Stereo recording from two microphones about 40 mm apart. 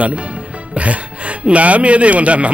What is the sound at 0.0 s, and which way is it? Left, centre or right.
Speech, right.